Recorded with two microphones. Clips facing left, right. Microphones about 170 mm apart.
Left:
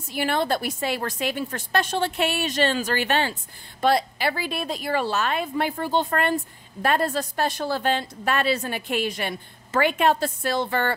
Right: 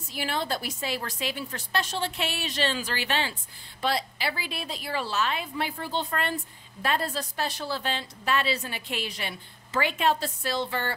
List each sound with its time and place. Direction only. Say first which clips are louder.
0.1 s a woman's voice: left 6 dB; 55° left (ahead or behind)